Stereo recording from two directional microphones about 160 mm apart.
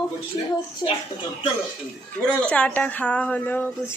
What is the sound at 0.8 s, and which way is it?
Speech, 25° left (ahead or behind).